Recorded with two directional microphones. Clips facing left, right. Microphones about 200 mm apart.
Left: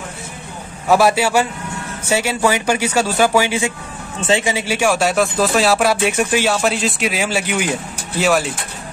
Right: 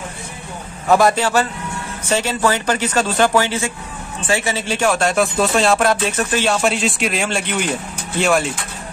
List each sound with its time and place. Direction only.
0.8 s speech: 5° left (ahead or behind)